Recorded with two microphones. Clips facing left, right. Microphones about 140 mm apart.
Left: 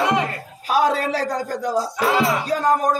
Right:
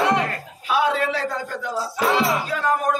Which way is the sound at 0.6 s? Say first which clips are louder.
Left 2 dB; 40° left (ahead or behind).